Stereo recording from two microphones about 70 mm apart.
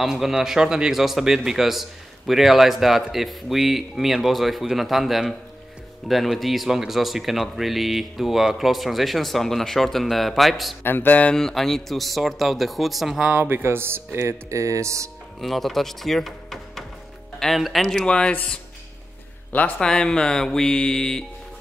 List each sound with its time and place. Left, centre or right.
0.0 s a man's voice: centre
10.8 s music: left
11.3 s a man's voice: centre
13.2 s speech: right
15.4 s a man's voice: centre
17.8 s mantra: centre
19.5 s music: left
19.9 s mantra: centre